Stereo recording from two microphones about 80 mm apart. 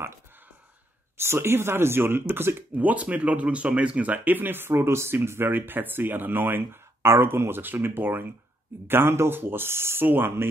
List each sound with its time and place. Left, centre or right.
1.2 s speech: right